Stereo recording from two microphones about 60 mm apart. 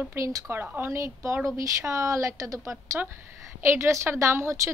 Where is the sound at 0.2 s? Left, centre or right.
Right.